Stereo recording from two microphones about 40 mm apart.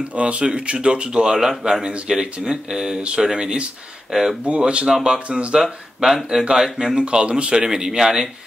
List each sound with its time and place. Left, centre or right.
0.0 s speech: right
4.1 s speech: centre
4.5 s speech: right
5.6 s speech: centre